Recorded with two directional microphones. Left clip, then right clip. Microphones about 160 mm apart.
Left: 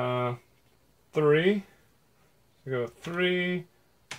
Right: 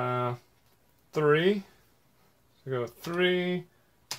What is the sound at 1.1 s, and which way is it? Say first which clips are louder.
Speech: left 1 dB; 15° right (ahead or behind).